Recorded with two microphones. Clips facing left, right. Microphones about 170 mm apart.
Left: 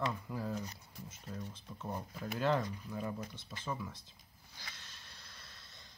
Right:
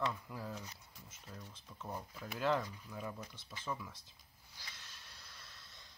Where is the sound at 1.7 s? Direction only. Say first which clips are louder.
Left 3 dB; 5° left (ahead or behind).